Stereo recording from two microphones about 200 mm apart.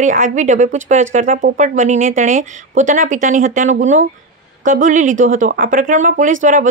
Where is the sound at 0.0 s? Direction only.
40° right (ahead or behind).